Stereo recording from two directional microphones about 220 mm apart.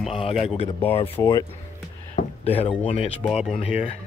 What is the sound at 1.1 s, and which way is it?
Speech, 15° left (ahead or behind).